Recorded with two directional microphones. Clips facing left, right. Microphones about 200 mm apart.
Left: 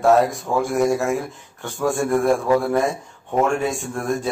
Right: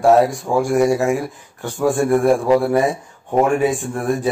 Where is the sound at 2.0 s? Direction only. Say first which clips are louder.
Right 3 dB; 15° right (ahead or behind).